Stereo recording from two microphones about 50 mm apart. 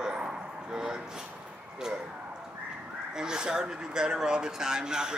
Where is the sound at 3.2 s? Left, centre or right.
Centre.